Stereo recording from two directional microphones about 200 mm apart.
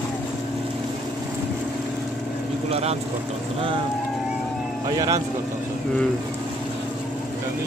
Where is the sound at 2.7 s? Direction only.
30° right (ahead or behind).